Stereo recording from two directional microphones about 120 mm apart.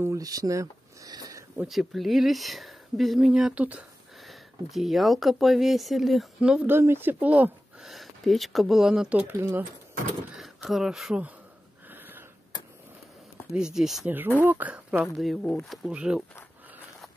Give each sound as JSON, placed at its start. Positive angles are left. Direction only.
{"t": 0.0, "sound": "a sound", "side_deg": -30}
{"t": 1.7, "sound": "speech", "side_deg": 0}
{"t": 4.2, "sound": "speech", "side_deg": 0}
{"t": 6.7, "sound": "speech", "side_deg": -20}
{"t": 7.9, "sound": "speech", "side_deg": 0}
{"t": 9.3, "sound": "speech", "side_deg": -20}
{"t": 10.3, "sound": "speech", "side_deg": 0}
{"t": 11.9, "sound": "sniff", "side_deg": -15}
{"t": 13.5, "sound": "speech", "side_deg": -5}
{"t": 14.0, "sound": "speech", "side_deg": -15}
{"t": 15.1, "sound": "speech", "side_deg": 0}